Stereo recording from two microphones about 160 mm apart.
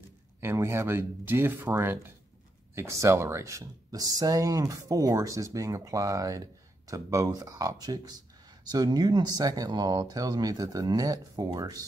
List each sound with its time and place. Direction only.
0.4 s speech: 15° right (ahead or behind)